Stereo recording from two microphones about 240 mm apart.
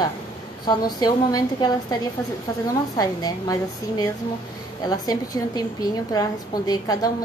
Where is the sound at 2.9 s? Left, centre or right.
Centre.